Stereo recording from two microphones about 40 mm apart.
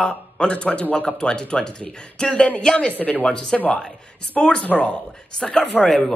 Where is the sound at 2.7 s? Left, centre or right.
Left.